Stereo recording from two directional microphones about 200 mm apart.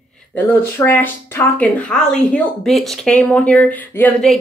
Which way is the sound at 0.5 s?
10° left (ahead or behind).